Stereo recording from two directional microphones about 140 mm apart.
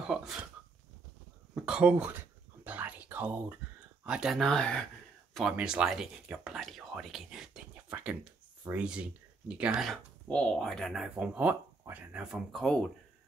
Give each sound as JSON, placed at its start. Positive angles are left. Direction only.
{"t": 0.1, "sound": "speech", "side_deg": -5}
{"t": 1.5, "sound": "whispering", "side_deg": -10}
{"t": 4.0, "sound": "speech", "side_deg": -5}
{"t": 5.3, "sound": "speech", "side_deg": -5}
{"t": 10.2, "sound": "speech", "side_deg": 5}